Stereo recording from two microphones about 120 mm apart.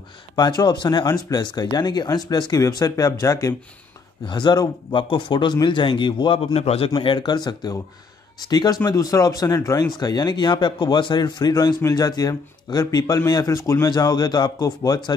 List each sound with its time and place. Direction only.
0.4 s speech: 35° left (ahead or behind)
4.2 s speech: 40° left (ahead or behind); by 6.9 s 55° left (ahead or behind)
7.0 s speech: 40° left (ahead or behind)